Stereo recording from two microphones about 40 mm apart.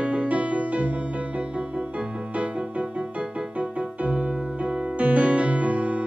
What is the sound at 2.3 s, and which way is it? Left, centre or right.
Music, right.